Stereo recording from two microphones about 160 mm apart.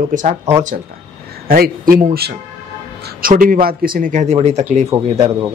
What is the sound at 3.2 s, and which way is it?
Speech, 60° right (ahead or behind).